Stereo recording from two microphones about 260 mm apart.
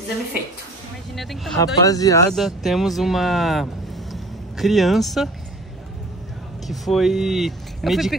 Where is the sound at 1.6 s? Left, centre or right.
Centre.